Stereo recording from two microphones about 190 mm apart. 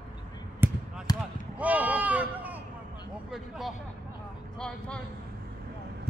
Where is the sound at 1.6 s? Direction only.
10° right (ahead or behind).